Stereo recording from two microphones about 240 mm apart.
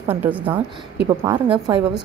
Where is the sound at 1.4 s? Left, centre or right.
Centre.